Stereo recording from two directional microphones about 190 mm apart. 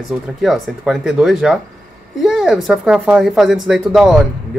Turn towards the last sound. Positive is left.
turn(degrees=-5)  # may be behind; listen again after turning